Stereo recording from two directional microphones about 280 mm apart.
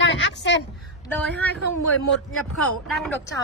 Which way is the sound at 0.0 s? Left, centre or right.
Left.